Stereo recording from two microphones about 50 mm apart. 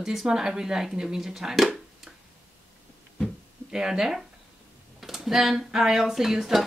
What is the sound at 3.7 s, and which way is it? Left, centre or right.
Speech, centre.